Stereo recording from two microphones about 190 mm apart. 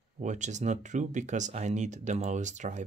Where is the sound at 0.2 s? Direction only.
40° right (ahead or behind).